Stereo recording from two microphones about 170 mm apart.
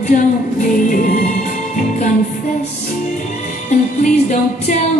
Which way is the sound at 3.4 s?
45° left (ahead or behind).